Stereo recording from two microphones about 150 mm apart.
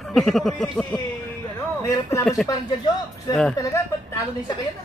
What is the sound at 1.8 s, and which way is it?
Speech, 20° left (ahead or behind).